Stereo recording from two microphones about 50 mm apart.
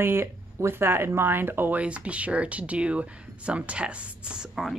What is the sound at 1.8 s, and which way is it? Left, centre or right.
Speech, right.